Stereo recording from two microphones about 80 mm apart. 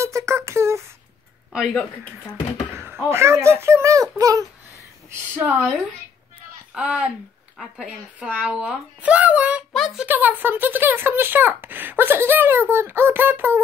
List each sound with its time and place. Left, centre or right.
0.0 s a sound: right
1.5 s speech: centre
2.7 s speech: right
5.3 s speech: right
6.7 s speech: centre
7.5 s speech: centre
8.3 s speech: centre